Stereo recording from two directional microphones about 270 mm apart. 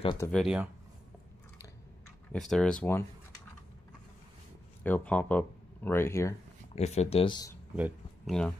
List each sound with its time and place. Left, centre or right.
0.0 s speech: centre
0.3 s speech: centre
2.3 s speech: centre
4.8 s speech: centre
6.7 s speech: left
7.7 s speech: centre